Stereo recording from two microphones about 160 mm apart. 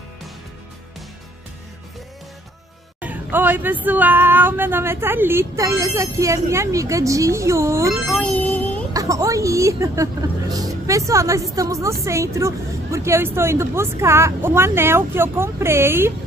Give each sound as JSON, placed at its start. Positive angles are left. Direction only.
{"t": 3.0, "sound": "speech", "side_deg": -10}
{"t": 8.1, "sound": "music", "side_deg": 10}
{"t": 8.9, "sound": "a sound", "side_deg": -20}
{"t": 10.5, "sound": "music", "side_deg": -20}
{"t": 11.5, "sound": "speech", "side_deg": -20}